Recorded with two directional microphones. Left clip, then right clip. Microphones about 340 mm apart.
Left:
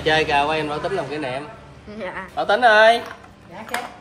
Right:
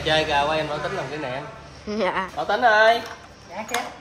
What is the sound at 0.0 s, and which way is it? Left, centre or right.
Speech, left.